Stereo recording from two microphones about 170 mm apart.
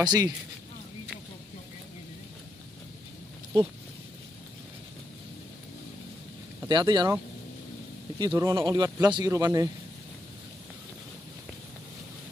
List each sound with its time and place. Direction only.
0.0 s speech: 25° right (ahead or behind)
6.7 s speech: 25° right (ahead or behind)
8.3 s speech: 15° right (ahead or behind)